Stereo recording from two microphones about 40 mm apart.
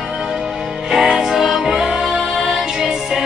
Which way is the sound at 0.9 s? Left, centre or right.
Centre.